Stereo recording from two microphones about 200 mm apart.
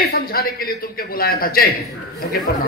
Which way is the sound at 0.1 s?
45° left (ahead or behind).